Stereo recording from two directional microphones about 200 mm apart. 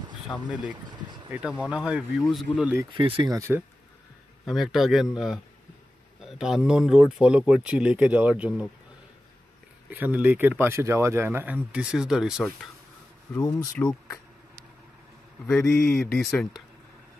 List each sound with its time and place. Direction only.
0.3 s speech: 5° left (ahead or behind)
0.8 s vehicle: 20° right (ahead or behind)
1.3 s speech: 5° right (ahead or behind)
2.9 s speech: 25° right (ahead or behind)
4.5 s speech: centre (ahead or behind)
9.8 s speech: 10° right (ahead or behind)
13.3 s speech: 15° left (ahead or behind)
15.6 s speech: 5° left (ahead or behind)